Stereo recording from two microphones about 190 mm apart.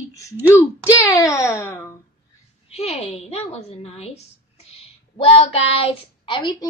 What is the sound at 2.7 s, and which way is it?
A woman's voice, 30° left (ahead or behind).